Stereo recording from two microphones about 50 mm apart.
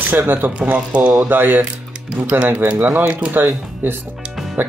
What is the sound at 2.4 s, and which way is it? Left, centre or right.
Speech, right.